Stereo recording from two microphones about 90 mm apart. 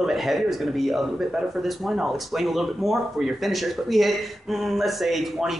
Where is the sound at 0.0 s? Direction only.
Centre (ahead or behind).